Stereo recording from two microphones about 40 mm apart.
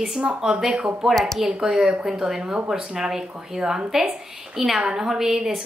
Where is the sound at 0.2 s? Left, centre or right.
Centre.